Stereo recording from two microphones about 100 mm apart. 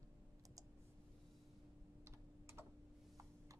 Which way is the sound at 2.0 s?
25° right (ahead or behind).